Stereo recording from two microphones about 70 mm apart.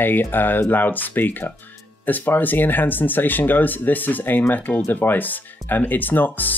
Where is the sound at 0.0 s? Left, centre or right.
Left.